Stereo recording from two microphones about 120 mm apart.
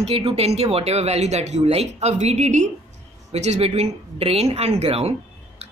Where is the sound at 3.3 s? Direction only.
65° right (ahead or behind).